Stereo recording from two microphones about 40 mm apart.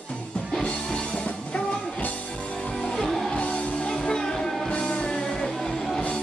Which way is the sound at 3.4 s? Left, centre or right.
Left.